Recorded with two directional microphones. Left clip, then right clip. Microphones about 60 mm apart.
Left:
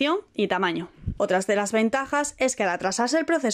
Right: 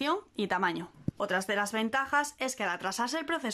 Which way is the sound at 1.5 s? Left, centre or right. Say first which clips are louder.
Left 5 dB; left.